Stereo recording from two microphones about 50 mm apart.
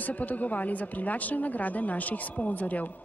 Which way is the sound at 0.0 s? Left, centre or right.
Left.